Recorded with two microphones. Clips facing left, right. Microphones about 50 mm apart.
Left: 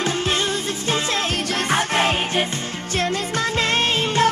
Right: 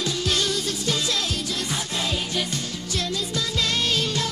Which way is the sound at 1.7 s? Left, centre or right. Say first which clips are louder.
Left 13 dB; left.